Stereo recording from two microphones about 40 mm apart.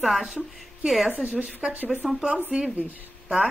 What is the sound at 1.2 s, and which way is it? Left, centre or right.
Speech, right.